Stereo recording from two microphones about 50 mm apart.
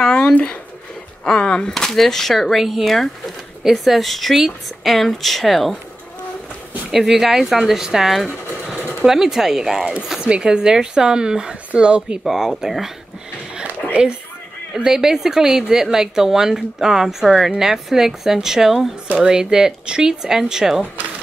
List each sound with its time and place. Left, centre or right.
0.1 s a sound: left
1.2 s speech: centre
1.7 s speech: centre
6.9 s a woman's voice: centre
10.2 s a woman's voice: centre
12.3 s a woman's voice: centre
14.8 s a woman's voice: centre